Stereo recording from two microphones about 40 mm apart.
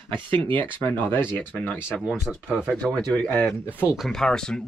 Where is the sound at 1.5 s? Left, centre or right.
Left.